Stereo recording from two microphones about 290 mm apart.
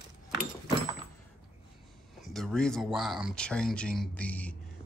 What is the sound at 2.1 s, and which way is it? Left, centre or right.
Speech, centre.